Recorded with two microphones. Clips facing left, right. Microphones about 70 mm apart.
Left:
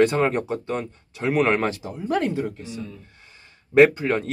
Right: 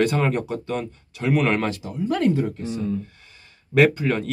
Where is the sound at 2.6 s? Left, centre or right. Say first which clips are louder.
Right 7 dB; right.